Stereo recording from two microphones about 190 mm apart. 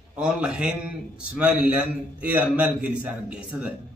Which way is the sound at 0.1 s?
5° right (ahead or behind).